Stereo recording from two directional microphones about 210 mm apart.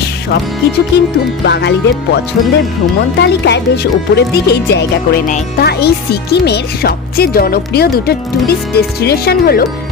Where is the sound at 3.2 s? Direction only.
55° left (ahead or behind).